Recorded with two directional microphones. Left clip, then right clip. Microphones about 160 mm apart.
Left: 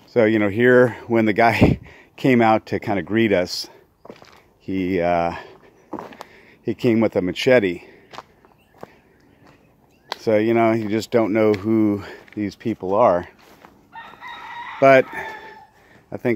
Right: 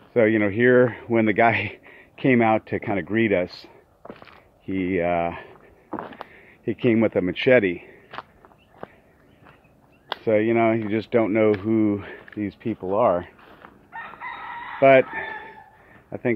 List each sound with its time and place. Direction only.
0.1 s speech: 40° left (ahead or behind)
4.0 s walk: centre (ahead or behind)
4.6 s speech: 40° left (ahead or behind)
5.9 s walk: 15° left (ahead or behind)
6.3 s speech: 35° left (ahead or behind)
10.2 s speech: 40° left (ahead or behind)
12.4 s speech: 45° left (ahead or behind)
13.4 s fowl: 10° left (ahead or behind)
14.8 s chicken: 45° left (ahead or behind)
16.1 s speech: 35° left (ahead or behind)